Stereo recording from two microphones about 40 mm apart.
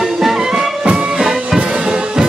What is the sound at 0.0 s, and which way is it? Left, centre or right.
Music, centre.